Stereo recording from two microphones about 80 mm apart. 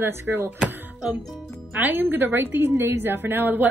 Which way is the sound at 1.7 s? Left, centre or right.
Right.